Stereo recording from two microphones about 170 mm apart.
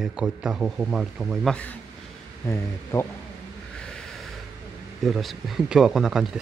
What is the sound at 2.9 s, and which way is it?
Speech, 15° left (ahead or behind).